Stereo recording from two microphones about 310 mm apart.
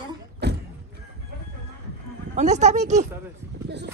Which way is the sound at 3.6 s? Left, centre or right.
Right.